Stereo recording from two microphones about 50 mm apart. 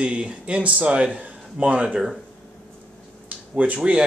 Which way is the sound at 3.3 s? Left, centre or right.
Right.